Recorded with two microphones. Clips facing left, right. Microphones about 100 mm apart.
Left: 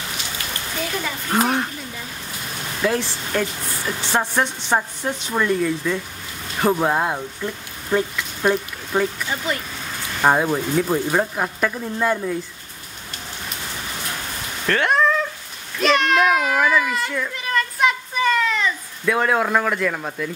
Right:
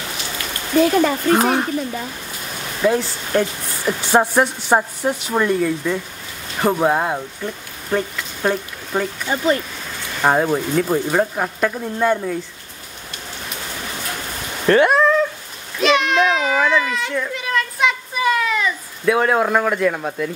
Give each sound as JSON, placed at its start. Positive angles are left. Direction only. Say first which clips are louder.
{"t": 0.7, "sound": "speech", "louder": "right 13 dB", "side_deg": -55}
{"t": 1.4, "sound": "speech", "louder": "right 3 dB", "side_deg": -10}
{"t": 2.9, "sound": "speech", "louder": "right 4 dB", "side_deg": -5}
{"t": 9.3, "sound": "speech", "louder": "right 5 dB", "side_deg": -40}
{"t": 10.2, "sound": "speech", "louder": "right 1 dB", "side_deg": 0}
{"t": 14.7, "sound": "a child's voice", "louder": "right 5 dB", "side_deg": -10}
{"t": 18.2, "sound": "cat", "louder": "right 1 dB", "side_deg": -10}